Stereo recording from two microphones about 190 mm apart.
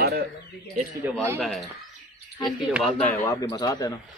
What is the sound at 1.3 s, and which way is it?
Speech, centre (ahead or behind).